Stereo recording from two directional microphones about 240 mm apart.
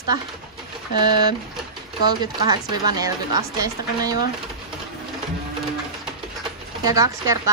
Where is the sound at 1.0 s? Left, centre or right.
Centre.